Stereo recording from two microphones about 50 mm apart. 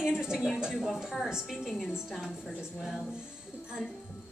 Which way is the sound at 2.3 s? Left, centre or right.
Centre.